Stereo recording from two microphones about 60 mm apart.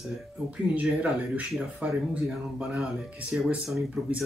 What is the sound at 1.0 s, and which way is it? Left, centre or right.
Speech, right.